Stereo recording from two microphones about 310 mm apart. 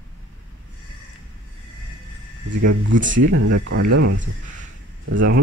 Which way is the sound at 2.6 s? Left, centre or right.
Right.